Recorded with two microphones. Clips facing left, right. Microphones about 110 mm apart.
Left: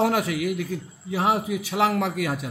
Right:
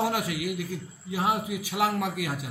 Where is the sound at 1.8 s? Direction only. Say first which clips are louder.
Left 4 dB; 90° left.